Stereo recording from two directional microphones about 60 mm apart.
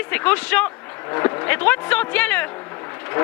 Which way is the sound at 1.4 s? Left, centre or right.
Left.